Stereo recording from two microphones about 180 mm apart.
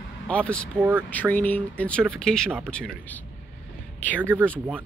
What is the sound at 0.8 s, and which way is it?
Speech, 10° right (ahead or behind).